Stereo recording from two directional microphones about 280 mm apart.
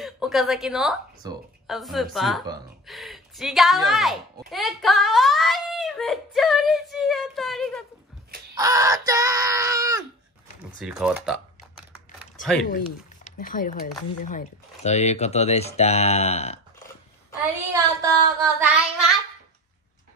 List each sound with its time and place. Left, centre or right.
0.0 s a woman's voice: centre
1.2 s speech: centre
1.7 s a woman's voice: centre
8.5 s speech: centre
12.7 s speech: left
17.7 s speech: centre